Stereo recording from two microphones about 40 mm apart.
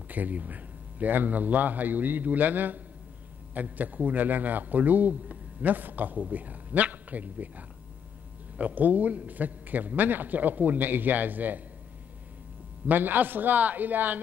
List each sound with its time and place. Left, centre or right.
0.1 s a man's voice: right
12.8 s a man's voice: right